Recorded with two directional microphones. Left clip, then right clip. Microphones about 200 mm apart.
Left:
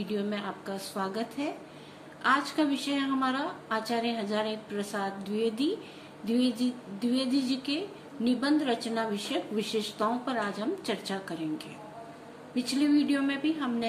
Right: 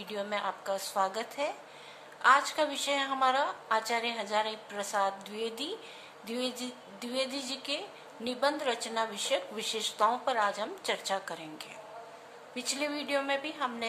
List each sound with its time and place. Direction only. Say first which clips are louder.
0.0 s a woman's voice: even; 25° right (ahead or behind)